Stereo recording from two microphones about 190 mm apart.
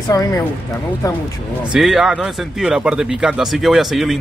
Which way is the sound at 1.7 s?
Centre (ahead or behind).